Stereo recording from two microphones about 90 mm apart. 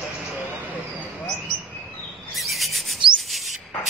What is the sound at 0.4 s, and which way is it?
Vehicle, 20° right (ahead or behind).